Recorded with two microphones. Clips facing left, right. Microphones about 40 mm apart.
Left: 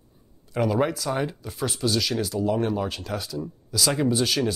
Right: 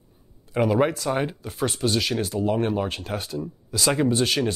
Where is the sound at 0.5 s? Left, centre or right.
Centre.